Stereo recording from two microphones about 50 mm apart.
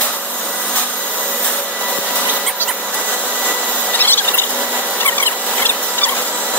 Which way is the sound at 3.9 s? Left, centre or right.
Left.